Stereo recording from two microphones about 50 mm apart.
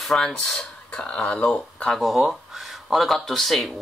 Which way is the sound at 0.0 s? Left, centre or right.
Centre.